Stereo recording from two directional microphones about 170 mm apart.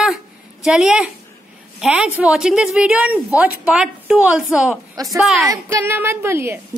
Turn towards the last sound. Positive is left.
turn(degrees=-15)  # may be behind; listen again after turning